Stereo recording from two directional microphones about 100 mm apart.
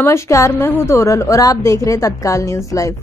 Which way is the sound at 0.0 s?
30° left (ahead or behind).